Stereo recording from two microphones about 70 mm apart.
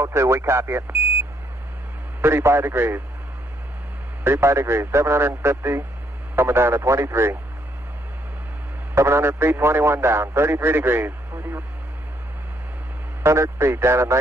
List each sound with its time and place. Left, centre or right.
0.0 s a man's voice: right
2.2 s a man's voice: right
4.2 s a man's voice: right
8.9 s a man's voice: right
13.2 s a man's voice: right